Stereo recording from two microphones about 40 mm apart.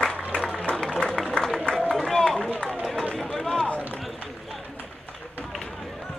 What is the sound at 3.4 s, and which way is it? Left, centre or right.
Run, left.